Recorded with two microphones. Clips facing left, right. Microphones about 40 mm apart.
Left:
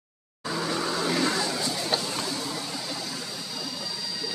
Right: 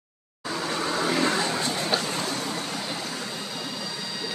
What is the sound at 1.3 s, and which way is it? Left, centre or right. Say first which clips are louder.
Vehicle: right 2 dB; right.